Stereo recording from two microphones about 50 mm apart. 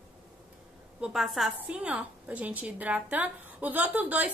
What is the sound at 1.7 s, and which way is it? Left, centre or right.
A woman's voice, right.